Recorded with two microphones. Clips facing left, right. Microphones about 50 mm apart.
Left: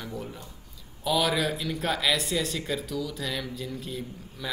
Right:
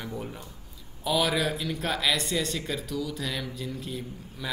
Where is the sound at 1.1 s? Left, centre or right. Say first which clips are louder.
Even; centre.